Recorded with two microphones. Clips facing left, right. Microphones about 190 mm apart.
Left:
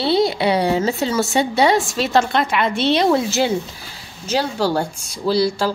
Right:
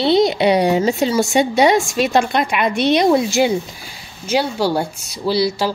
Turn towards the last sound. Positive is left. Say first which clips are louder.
# even
turn(degrees=-5)  # may be behind; listen again after turning